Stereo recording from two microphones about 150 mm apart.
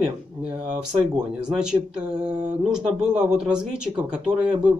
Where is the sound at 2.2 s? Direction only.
50° right (ahead or behind).